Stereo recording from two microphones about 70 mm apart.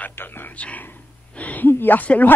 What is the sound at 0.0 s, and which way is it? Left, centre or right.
Whispering, left.